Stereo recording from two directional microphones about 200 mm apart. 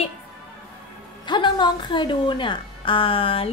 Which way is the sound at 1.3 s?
25° left (ahead or behind).